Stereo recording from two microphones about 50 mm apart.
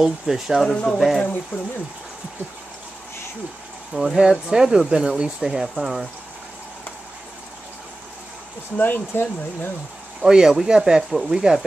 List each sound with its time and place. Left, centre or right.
0.0 s speech: centre
3.9 s speech: centre
8.7 s speech: left
10.2 s speech: centre